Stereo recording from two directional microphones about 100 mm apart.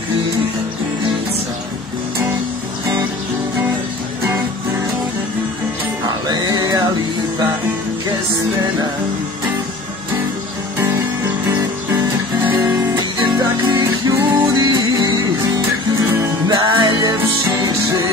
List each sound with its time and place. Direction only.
6.0 s music: 45° right (ahead or behind)
13.6 s music: 40° right (ahead or behind)